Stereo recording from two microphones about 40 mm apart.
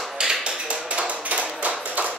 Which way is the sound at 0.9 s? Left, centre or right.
Right.